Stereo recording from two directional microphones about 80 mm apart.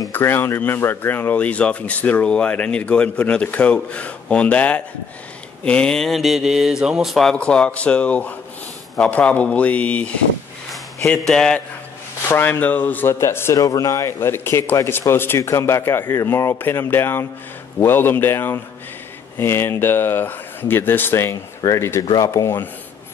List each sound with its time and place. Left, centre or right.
0.1 s speech: left; by 7.3 s centre
7.3 s speech: centre
12.3 s speech: left
13.1 s speech: left
13.6 s speech: left